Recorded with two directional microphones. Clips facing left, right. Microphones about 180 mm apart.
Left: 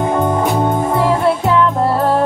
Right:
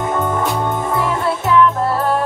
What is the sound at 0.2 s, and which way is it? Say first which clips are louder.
Music: left 4 dB; 20° left (ahead or behind).